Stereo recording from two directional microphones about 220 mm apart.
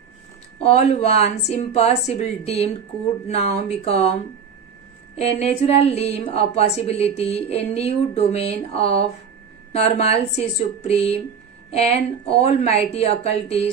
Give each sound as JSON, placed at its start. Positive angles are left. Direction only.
{"t": 0.6, "sound": "a woman's voice", "side_deg": 30}